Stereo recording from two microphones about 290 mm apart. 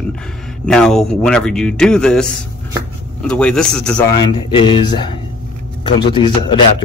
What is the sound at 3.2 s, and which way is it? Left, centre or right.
Speech, centre.